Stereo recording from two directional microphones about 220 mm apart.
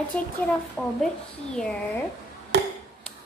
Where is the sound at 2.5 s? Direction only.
50° right (ahead or behind).